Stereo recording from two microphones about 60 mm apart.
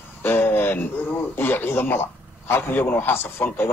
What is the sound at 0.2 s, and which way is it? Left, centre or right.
A man's voice, left.